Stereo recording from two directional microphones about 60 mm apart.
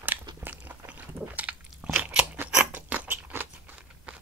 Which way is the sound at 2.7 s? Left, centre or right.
Right.